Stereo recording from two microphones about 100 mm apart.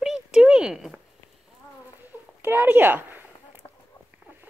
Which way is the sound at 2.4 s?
20° right (ahead or behind).